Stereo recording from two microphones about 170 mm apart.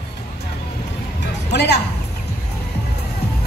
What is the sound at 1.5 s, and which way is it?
Speech, 75° left (ahead or behind).